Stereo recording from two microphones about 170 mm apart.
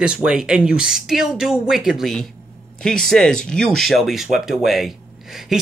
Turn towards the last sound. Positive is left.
turn(degrees=0)  # may be behind; listen again after turning